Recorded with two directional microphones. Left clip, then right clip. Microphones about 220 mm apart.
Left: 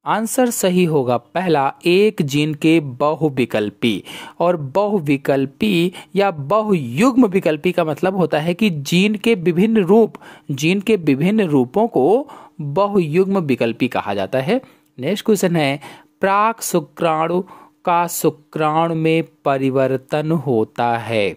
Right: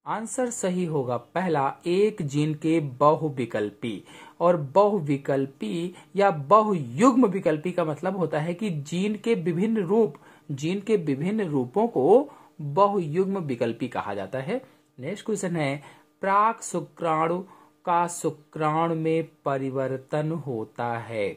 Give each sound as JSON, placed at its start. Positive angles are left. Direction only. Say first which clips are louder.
{"t": 0.0, "sound": "speech", "louder": "left 11 dB", "side_deg": 40}